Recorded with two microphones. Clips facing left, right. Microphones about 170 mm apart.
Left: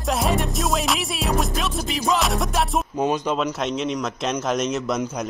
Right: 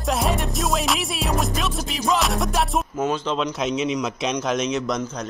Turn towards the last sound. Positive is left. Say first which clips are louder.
# left 1 dB
turn(degrees=10)  # may be behind; listen again after turning